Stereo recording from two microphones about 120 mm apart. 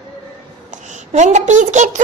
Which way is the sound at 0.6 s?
90° right.